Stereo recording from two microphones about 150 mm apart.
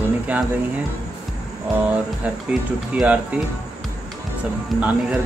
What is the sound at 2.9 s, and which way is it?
Speech, 5° right (ahead or behind).